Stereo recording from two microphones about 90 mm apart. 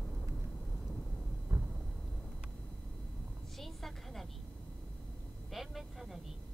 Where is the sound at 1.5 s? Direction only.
45° right (ahead or behind).